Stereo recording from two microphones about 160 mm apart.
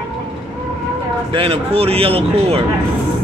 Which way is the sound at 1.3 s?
35° right (ahead or behind).